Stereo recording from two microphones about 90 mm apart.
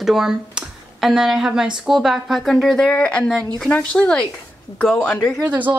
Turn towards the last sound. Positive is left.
turn(degrees=-20)  # may be behind; listen again after turning